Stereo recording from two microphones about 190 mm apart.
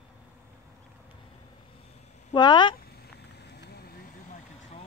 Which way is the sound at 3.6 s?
55° left (ahead or behind).